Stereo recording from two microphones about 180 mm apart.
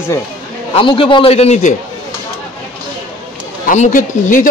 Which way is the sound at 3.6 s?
45° left (ahead or behind).